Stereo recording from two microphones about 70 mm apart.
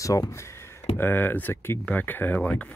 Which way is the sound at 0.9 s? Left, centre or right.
Left.